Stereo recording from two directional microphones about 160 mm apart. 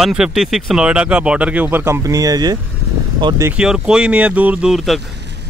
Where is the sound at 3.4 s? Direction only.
5° right (ahead or behind).